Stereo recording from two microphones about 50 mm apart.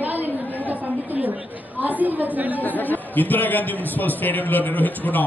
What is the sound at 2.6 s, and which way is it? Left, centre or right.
A man's voice, left.